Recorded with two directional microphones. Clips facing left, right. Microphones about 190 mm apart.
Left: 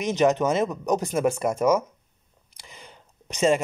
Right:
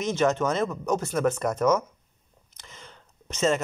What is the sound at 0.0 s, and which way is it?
Speech, 15° left (ahead or behind).